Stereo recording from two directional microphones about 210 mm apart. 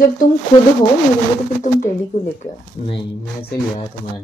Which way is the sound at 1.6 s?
35° left (ahead or behind).